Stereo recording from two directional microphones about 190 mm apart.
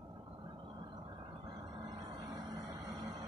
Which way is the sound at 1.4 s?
20° right (ahead or behind).